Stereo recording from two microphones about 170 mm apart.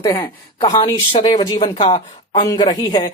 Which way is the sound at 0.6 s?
30° left (ahead or behind).